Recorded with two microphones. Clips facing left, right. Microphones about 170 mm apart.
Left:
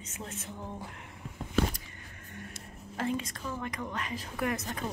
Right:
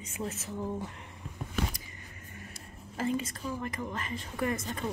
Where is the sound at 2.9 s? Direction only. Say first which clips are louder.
Right 1 dB; centre (ahead or behind).